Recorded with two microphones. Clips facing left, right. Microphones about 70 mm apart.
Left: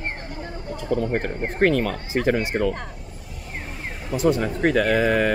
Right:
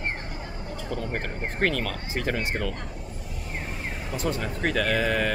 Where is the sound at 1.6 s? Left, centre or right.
Left.